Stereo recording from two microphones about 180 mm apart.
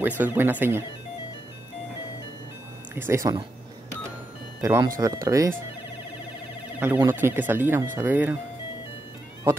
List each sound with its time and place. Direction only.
0.0 s speech: 10° right (ahead or behind)
2.9 s speech: 15° right (ahead or behind)
4.6 s speech: 15° right (ahead or behind)
6.8 s speech: 15° right (ahead or behind)